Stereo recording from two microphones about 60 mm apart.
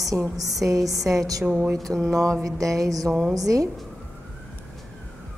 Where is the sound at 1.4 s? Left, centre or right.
Right.